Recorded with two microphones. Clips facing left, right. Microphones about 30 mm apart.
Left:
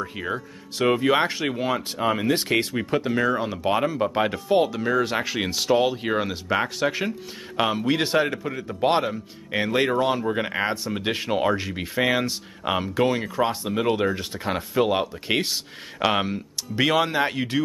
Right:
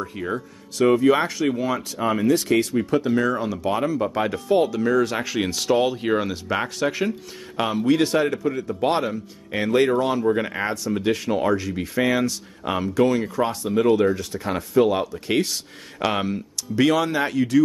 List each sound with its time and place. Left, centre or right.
0.0 s speech: left
2.0 s speech: centre
2.2 s speech: left
11.9 s speech: centre